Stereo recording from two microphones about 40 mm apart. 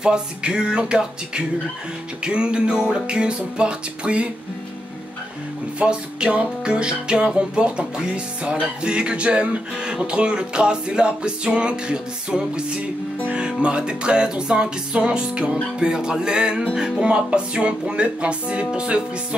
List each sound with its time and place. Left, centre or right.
0.0 s music: right
5.8 s music: right